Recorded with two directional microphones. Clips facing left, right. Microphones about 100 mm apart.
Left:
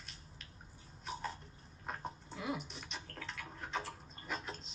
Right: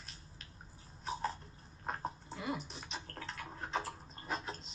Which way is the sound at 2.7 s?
35° right (ahead or behind).